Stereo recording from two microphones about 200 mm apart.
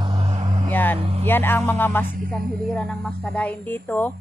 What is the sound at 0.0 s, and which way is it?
Vehicle, 25° right (ahead or behind).